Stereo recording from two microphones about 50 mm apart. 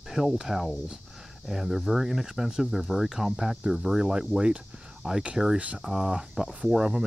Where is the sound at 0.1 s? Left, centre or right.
Centre.